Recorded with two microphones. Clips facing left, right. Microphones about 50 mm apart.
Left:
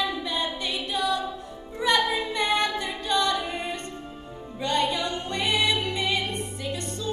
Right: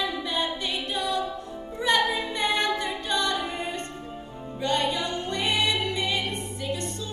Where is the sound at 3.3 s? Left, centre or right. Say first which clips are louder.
Left 1 dB; right.